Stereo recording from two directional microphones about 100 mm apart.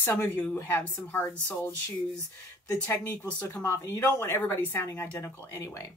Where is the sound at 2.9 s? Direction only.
20° left (ahead or behind).